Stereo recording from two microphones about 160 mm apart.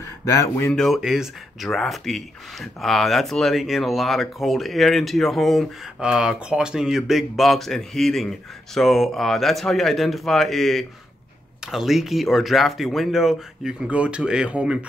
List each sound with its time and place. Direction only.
0.0 s speech: 20° left (ahead or behind)
0.7 s speech: centre (ahead or behind)